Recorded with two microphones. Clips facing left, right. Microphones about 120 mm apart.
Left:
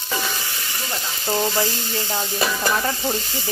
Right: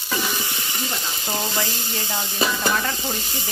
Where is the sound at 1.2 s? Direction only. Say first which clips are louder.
Left 6 dB; 20° left (ahead or behind).